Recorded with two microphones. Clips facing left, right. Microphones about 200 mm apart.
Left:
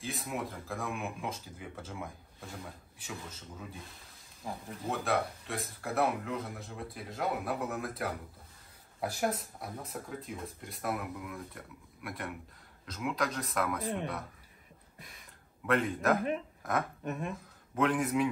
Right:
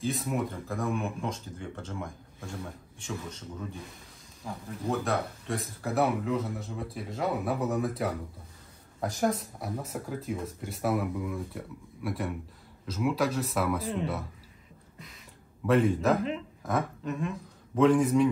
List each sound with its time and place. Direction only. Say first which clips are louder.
0.0 s speech: right 7 dB; centre (ahead or behind)
4.4 s speech: right 1 dB; 15° left (ahead or behind)
4.8 s speech: right 2 dB; centre (ahead or behind)
15.6 s speech: right 5 dB; centre (ahead or behind)
17.7 s speech: right 7 dB; centre (ahead or behind)